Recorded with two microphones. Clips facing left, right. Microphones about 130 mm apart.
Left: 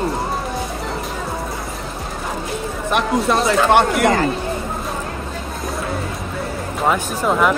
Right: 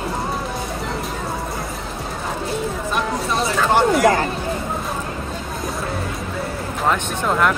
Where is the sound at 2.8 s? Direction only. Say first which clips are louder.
Left 9 dB; 65° left (ahead or behind).